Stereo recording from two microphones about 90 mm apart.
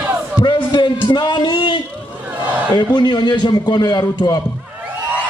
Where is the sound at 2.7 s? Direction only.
60° left (ahead or behind).